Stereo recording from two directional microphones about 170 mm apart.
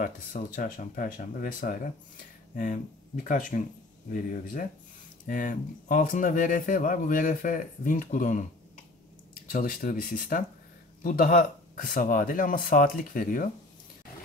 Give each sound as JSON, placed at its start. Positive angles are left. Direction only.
{"t": 0.6, "sound": "speech", "side_deg": 55}
{"t": 9.5, "sound": "speech", "side_deg": 55}